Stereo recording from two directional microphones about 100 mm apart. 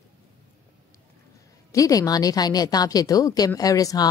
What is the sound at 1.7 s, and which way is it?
A woman's voice, 35° left (ahead or behind).